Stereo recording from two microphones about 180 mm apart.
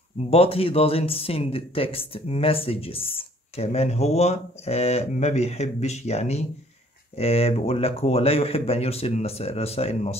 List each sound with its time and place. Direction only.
0.3 s speech: 30° left (ahead or behind)